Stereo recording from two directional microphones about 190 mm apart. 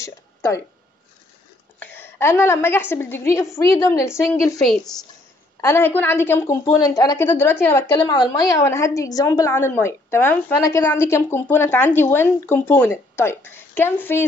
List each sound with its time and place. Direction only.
1.8 s a woman's voice: 10° left (ahead or behind)
4.6 s a woman's voice: centre (ahead or behind)
7.9 s a woman's voice: 25° left (ahead or behind)